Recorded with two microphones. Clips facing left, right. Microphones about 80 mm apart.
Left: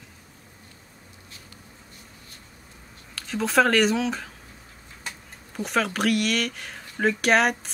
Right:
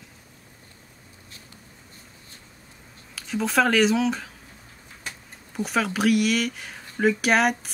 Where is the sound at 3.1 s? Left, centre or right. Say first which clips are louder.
Even; centre.